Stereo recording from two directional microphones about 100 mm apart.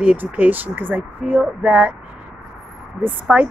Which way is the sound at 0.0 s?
15° right (ahead or behind).